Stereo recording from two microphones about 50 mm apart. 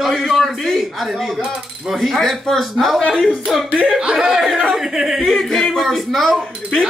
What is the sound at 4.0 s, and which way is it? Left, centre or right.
Speech, centre.